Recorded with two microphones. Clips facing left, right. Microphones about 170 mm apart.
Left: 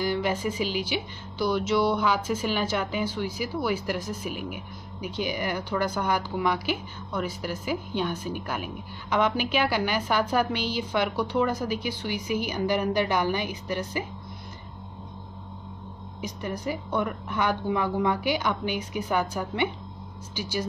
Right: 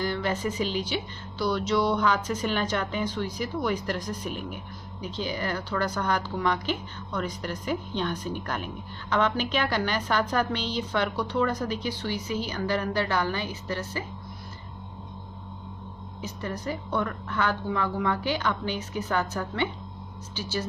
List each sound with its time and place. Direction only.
0.0 s a woman's voice: 10° left (ahead or behind)
16.2 s a woman's voice: 15° left (ahead or behind)